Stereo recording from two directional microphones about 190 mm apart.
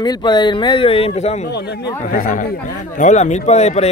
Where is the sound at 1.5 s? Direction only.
60° left (ahead or behind).